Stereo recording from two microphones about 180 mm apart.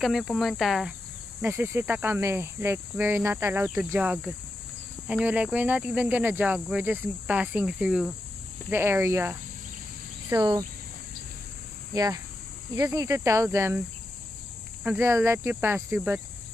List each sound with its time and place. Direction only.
0.0 s cricket: centre (ahead or behind)
1.4 s speech: 10° right (ahead or behind)
11.9 s speech: 20° right (ahead or behind)